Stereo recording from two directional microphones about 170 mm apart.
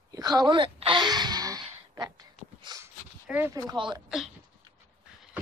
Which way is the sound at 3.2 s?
10° right (ahead or behind).